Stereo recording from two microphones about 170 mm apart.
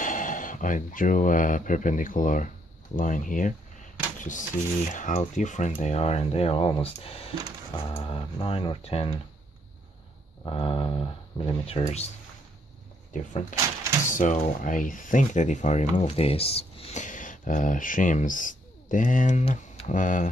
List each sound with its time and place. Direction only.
0.0 s speech: 50° left (ahead or behind); by 9.1 s 30° left (ahead or behind)
10.4 s speech: 30° left (ahead or behind)
13.1 s speech: 50° left (ahead or behind)